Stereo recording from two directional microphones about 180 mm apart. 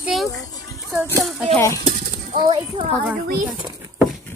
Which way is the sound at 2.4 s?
25° right (ahead or behind).